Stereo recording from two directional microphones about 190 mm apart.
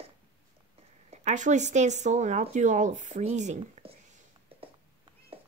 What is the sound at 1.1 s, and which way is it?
Speech, 40° right (ahead or behind).